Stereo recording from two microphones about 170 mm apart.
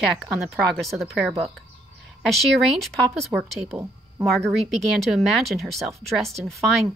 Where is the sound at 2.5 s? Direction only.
Centre (ahead or behind).